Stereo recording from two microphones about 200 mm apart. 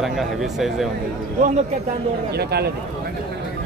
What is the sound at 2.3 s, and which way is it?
Speech, 55° right (ahead or behind).